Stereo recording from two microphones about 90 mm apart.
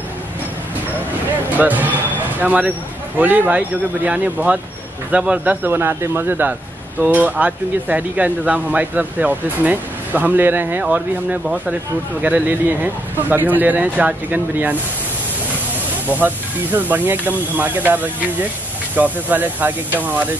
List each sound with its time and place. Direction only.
1.6 s speech: 20° right (ahead or behind)
10.8 s speech: 10° right (ahead or behind)
16.1 s speech: 20° right (ahead or behind)